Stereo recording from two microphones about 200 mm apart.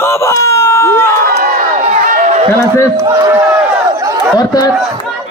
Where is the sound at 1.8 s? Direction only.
35° right (ahead or behind).